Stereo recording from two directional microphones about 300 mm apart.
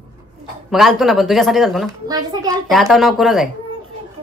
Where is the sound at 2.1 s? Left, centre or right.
Centre.